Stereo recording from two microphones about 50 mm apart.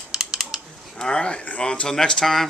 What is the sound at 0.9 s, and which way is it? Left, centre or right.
Speech, centre.